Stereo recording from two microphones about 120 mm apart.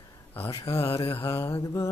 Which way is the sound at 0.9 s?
50° left (ahead or behind).